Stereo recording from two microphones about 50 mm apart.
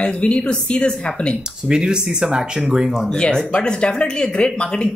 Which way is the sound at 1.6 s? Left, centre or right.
Centre.